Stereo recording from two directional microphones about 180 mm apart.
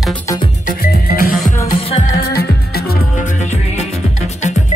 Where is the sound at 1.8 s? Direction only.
35° left (ahead or behind).